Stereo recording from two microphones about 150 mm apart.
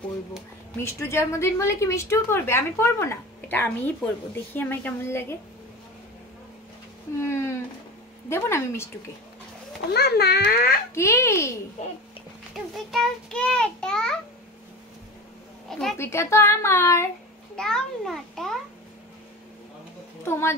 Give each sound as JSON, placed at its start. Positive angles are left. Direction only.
{"t": 0.7, "sound": "speech", "side_deg": 15}
{"t": 7.2, "sound": "a sound", "side_deg": 15}
{"t": 8.3, "sound": "speech", "side_deg": 15}
{"t": 9.8, "sound": "a child's voice", "side_deg": 90}
{"t": 11.0, "sound": "a child's voice", "side_deg": 20}
{"t": 12.5, "sound": "a child's voice", "side_deg": 5}
{"t": 16.0, "sound": "speech", "side_deg": 20}
{"t": 17.6, "sound": "a child's voice", "side_deg": 5}
{"t": 20.2, "sound": "speech", "side_deg": 15}